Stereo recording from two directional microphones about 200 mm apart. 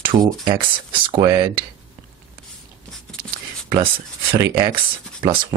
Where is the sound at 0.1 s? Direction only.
20° right (ahead or behind).